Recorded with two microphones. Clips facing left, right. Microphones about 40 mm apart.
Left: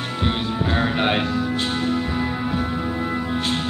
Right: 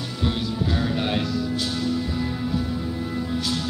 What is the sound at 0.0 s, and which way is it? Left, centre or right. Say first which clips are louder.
Music: left 3 dB; left.